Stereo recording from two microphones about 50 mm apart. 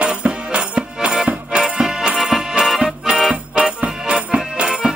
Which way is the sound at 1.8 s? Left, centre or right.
Centre.